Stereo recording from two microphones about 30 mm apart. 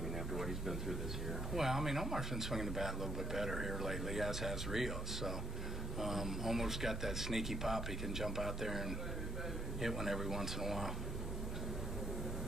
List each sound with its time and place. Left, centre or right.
0.3 s speech: centre